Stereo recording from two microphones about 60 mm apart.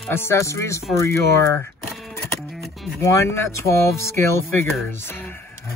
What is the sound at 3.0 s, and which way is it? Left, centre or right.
Speech, left.